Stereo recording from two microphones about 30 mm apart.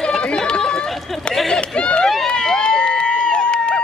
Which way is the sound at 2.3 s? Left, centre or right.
Left.